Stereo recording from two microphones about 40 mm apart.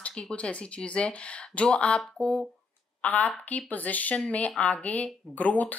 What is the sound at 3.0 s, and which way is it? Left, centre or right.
A woman's voice, left.